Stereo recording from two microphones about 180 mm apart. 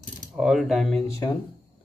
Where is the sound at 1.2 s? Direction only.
20° left (ahead or behind).